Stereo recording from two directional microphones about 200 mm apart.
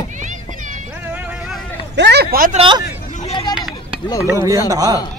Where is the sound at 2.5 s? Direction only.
25° right (ahead or behind).